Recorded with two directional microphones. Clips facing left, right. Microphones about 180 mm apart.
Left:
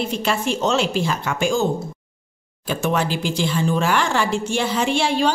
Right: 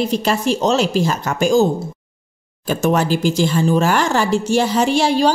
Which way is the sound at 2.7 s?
40° right (ahead or behind).